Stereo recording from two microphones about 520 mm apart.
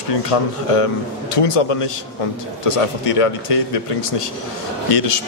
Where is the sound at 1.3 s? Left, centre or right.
Left.